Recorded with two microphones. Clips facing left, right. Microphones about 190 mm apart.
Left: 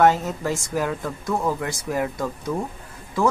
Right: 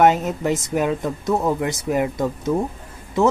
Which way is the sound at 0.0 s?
20° right (ahead or behind).